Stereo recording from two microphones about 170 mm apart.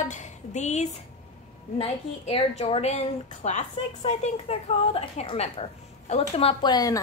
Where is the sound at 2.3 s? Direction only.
35° left (ahead or behind).